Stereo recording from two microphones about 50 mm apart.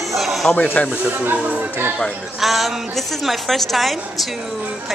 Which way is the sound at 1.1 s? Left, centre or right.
Right.